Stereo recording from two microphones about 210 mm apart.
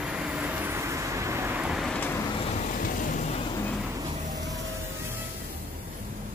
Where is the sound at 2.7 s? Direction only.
40° left (ahead or behind).